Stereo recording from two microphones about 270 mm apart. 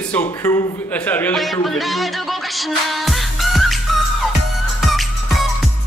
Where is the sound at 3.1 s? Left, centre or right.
Centre.